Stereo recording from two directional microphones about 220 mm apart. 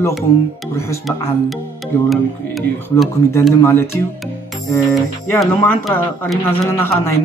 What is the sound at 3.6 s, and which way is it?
Speech, 10° left (ahead or behind).